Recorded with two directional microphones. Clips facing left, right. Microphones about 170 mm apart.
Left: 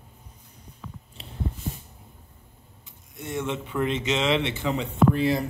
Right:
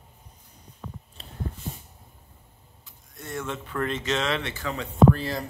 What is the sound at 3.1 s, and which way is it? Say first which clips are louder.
A man's voice: left 4 dB; 20° left (ahead or behind).